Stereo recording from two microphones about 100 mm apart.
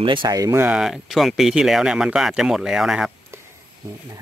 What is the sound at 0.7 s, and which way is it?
Speech, centre (ahead or behind).